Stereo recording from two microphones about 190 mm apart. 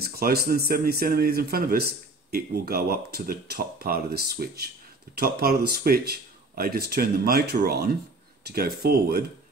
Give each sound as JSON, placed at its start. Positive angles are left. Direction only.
{"t": 0.0, "sound": "speech", "side_deg": -55}